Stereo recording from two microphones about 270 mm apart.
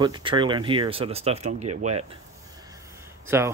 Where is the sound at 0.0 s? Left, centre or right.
Centre.